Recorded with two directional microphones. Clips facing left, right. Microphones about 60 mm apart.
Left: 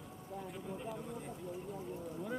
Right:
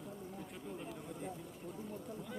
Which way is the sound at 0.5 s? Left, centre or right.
Centre.